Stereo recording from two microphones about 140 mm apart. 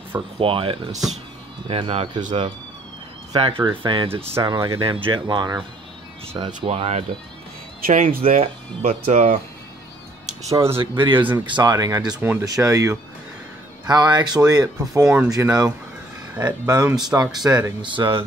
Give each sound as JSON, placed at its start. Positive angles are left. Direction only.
{"t": 0.4, "sound": "speech", "side_deg": -40}
{"t": 3.3, "sound": "speech", "side_deg": -40}
{"t": 7.8, "sound": "speech", "side_deg": -75}
{"t": 8.3, "sound": "speech", "side_deg": -50}
{"t": 10.7, "sound": "speech", "side_deg": -35}
{"t": 12.2, "sound": "speech", "side_deg": -15}
{"t": 15.0, "sound": "speech", "side_deg": -5}
{"t": 15.3, "sound": "speech", "side_deg": -25}